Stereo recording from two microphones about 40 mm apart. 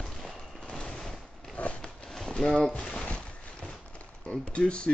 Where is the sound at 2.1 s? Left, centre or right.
Centre.